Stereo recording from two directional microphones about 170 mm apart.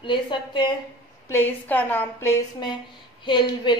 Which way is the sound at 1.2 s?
15° left (ahead or behind).